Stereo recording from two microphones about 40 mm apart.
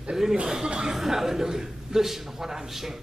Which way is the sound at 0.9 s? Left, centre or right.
Centre.